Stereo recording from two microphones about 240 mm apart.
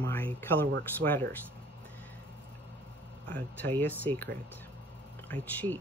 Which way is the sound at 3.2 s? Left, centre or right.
Centre.